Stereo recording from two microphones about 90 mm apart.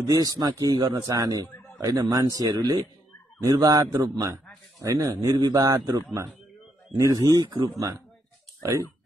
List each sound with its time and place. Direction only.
0.0 s a man's voice: 40° right (ahead or behind)
7.4 s speech: 60° right (ahead or behind)
8.6 s speech: 35° right (ahead or behind)